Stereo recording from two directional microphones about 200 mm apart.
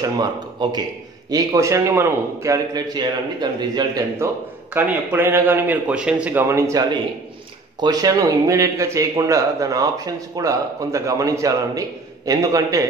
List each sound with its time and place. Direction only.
0.2 s speech: 20° right (ahead or behind)